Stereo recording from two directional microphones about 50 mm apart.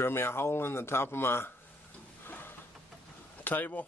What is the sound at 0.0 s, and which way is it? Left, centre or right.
Speech, left.